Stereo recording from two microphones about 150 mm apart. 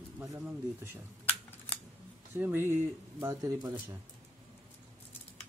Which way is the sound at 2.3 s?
15° right (ahead or behind).